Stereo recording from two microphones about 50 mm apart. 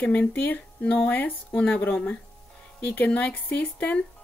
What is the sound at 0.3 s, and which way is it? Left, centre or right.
Speech, left.